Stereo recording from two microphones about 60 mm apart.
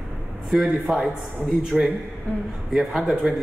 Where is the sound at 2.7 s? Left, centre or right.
Centre.